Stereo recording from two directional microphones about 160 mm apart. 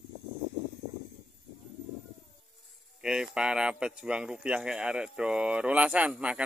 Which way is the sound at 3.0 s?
5° right (ahead or behind).